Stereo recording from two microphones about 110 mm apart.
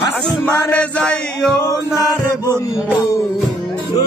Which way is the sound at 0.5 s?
15° left (ahead or behind).